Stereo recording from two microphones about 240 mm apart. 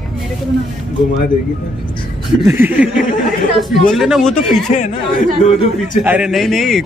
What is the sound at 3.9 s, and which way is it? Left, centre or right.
Speech, centre.